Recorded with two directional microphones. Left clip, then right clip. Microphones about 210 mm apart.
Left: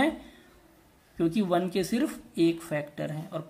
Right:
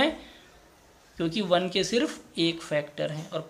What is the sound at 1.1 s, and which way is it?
Speech, 15° left (ahead or behind).